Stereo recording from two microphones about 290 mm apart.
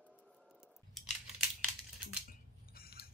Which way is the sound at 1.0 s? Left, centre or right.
Centre.